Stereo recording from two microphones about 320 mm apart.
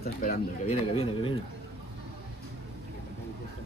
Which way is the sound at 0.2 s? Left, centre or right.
Left.